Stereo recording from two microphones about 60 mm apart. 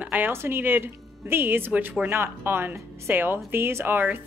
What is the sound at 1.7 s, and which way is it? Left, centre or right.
Speech, right.